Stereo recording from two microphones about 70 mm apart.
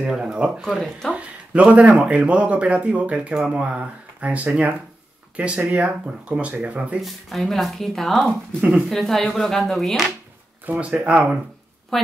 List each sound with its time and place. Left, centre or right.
0.1 s speech: centre
1.1 s speech: centre
7.0 s speech: centre
8.6 s speech: centre
8.9 s speech: centre
10.7 s speech: centre
11.9 s speech: centre